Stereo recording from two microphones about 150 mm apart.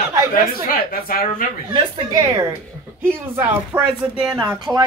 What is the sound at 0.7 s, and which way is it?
Speech, 80° left.